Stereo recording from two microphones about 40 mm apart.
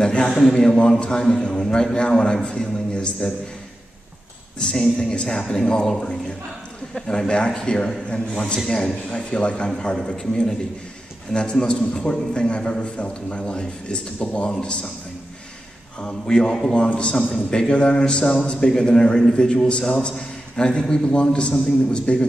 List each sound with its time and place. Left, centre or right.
0.0 s a man's voice: left
4.6 s a man's voice: centre
16.0 s a man's voice: centre